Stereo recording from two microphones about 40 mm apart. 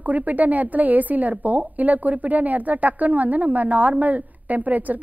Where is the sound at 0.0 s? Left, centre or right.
Right.